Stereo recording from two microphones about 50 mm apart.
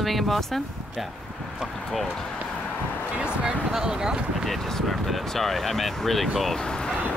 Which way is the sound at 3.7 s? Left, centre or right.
Centre.